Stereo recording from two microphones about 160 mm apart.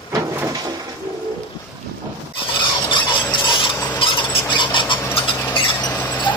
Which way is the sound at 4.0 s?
30° left (ahead or behind).